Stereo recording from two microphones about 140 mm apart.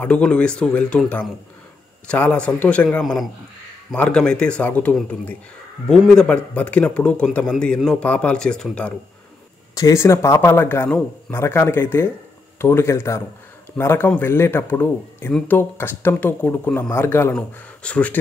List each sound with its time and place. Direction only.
0.0 s a man's voice: 10° left (ahead or behind)
9.8 s a man's voice: 25° left (ahead or behind)